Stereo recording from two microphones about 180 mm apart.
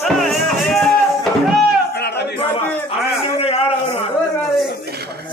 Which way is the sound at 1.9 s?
70° left (ahead or behind).